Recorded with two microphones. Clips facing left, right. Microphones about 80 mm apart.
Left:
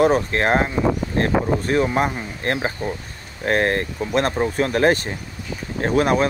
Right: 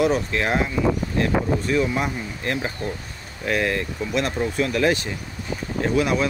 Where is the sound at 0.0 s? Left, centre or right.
Left.